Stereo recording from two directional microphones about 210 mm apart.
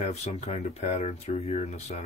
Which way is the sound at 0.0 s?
35° left (ahead or behind).